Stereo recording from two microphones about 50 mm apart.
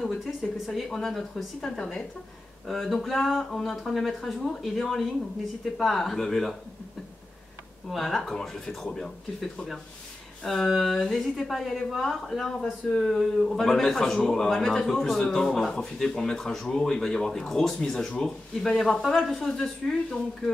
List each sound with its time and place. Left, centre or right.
0.0 s speech: centre
1.8 s speech: centre
2.6 s speech: centre
7.9 s speech: centre